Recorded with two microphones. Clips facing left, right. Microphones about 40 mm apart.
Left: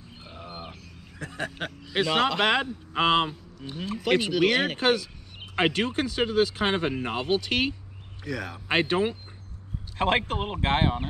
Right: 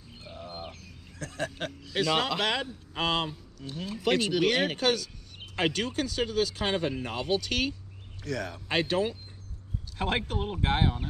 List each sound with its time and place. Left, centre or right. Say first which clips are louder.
0.2 s a sound: even; centre
2.1 s speech: left 7 dB; centre
2.4 s speech: left 6 dB; left
4.3 s speech: left 3 dB; centre
4.7 s speech: left 3 dB; left
8.2 s speech: left 1 dB; centre
8.6 s speech: left 4 dB; left
9.9 s speech: left 5 dB; left